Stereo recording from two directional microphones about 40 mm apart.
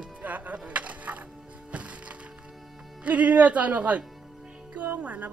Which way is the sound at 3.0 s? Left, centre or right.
Right.